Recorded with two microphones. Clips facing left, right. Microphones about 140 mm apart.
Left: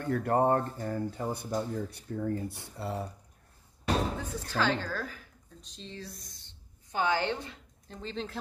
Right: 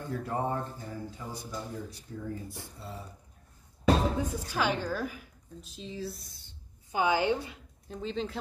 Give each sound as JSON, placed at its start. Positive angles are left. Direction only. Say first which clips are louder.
{"t": 0.0, "sound": "speech", "louder": "left 6 dB", "side_deg": 60}
{"t": 4.2, "sound": "a woman's voice", "louder": "right 1 dB", "side_deg": -15}